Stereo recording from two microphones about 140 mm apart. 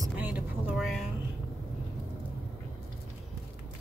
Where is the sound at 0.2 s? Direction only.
5° right (ahead or behind).